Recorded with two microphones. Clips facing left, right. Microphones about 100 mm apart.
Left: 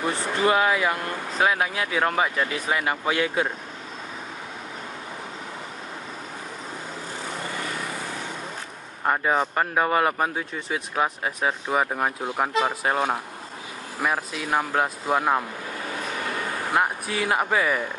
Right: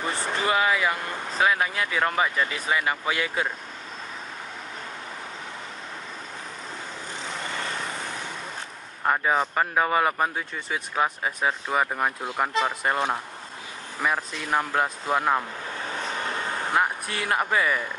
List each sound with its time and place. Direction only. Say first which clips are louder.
0.0 s speech: left 4 dB; centre (ahead or behind)
9.0 s speech: left 1 dB; 5° left (ahead or behind)
15.9 s vehicle: even; 30° right (ahead or behind)
16.7 s speech: left 2 dB; 5° left (ahead or behind)